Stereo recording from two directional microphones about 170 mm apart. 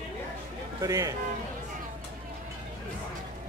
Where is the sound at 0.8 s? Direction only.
20° right (ahead or behind).